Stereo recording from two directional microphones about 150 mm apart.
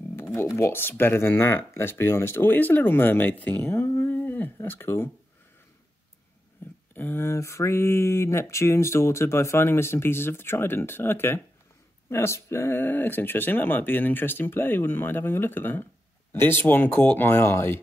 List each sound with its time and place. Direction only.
0.1 s speech: 15° left (ahead or behind)
7.0 s speech: 15° left (ahead or behind)